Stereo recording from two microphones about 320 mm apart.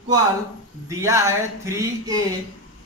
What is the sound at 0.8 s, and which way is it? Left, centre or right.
Speech, centre.